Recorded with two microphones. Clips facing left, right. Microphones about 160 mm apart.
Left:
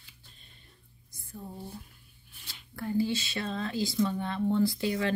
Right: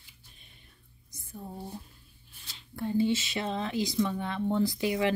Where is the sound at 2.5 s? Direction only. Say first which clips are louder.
Right 1 dB; 20° right (ahead or behind).